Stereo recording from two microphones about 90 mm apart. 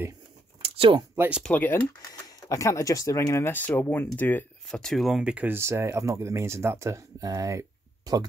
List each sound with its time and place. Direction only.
0.7 s speech: 70° right (ahead or behind)
1.5 s speech: 20° left (ahead or behind)
2.0 s speech: 40° left (ahead or behind); by 4.5 s 25° left (ahead or behind)
4.6 s speech: 5° left (ahead or behind)
5.3 s speech: 20° right (ahead or behind); by 8.3 s 45° right (ahead or behind)